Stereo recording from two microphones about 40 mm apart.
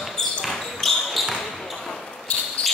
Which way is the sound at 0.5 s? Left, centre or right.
Centre.